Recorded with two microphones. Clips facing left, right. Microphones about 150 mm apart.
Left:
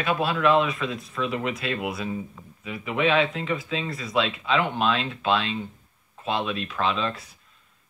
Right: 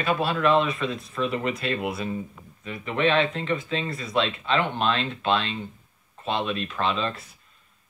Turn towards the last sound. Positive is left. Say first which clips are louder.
# even
turn(degrees=0)  # may be behind; listen again after turning